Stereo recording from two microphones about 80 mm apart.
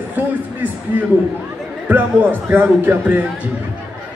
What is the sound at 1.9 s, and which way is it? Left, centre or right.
A man's voice, right.